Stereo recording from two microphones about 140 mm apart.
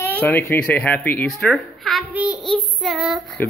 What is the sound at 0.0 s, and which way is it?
Speech, 15° left (ahead or behind).